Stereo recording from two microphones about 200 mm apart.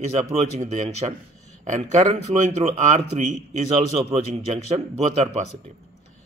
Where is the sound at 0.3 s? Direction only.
35° right (ahead or behind).